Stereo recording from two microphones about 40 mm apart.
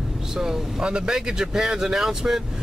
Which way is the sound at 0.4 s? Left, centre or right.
Centre.